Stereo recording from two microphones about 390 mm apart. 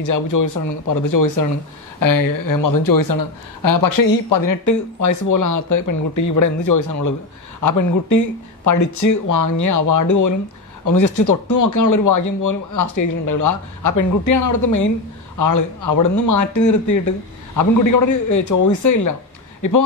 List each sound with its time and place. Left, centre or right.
0.0 s speech: left